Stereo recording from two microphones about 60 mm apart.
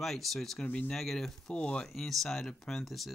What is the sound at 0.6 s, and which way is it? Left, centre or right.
Speech, left.